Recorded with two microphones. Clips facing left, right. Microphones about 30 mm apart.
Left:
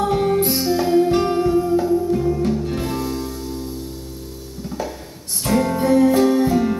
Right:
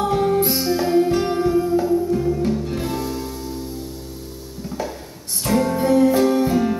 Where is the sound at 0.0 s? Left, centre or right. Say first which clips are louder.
Even; centre.